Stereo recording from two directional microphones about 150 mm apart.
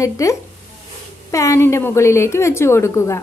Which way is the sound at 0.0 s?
20° left (ahead or behind).